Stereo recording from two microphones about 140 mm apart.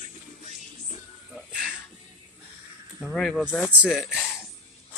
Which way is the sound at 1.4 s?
5° right (ahead or behind).